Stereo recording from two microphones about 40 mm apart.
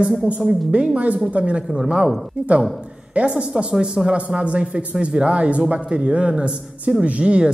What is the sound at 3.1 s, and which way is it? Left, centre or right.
A man's voice, right.